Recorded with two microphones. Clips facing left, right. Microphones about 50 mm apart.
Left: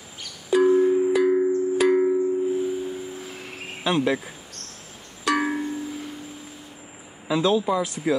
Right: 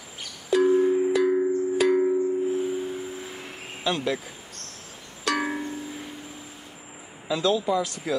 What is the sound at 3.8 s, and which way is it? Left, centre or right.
Speech, left.